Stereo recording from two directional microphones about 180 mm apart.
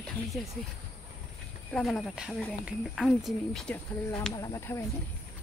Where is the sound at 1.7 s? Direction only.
5° left (ahead or behind).